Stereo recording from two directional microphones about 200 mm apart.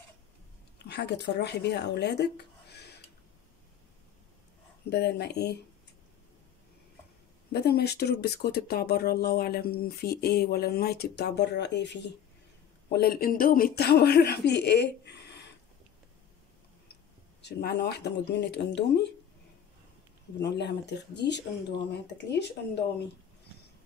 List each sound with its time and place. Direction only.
0.7 s speech: 55° left (ahead or behind)
4.8 s speech: 55° left (ahead or behind)
7.5 s speech: 55° left (ahead or behind)
12.9 s speech: 50° left (ahead or behind)
17.4 s speech: 55° left (ahead or behind)
20.4 s speech: 60° left (ahead or behind)